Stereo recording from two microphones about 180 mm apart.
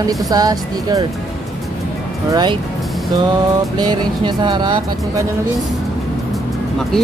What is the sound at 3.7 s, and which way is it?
Speech, 25° right (ahead or behind).